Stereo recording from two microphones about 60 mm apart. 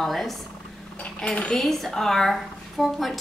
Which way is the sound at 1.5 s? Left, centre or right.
Centre.